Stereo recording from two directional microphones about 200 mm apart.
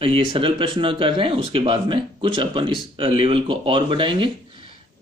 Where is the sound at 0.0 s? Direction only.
25° right (ahead or behind).